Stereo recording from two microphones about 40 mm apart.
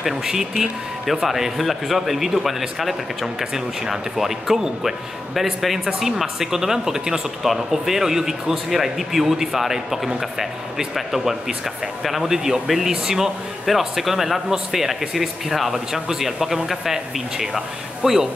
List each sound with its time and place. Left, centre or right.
0.1 s speech: centre
12.9 s speech: centre
13.7 s speech: centre